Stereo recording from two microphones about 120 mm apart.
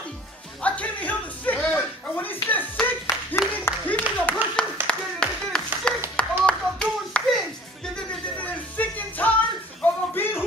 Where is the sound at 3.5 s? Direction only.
15° left (ahead or behind).